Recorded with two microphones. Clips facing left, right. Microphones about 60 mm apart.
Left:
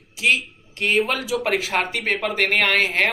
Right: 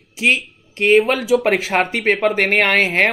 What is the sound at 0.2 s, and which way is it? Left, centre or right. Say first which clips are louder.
Speech: right 3 dB; right.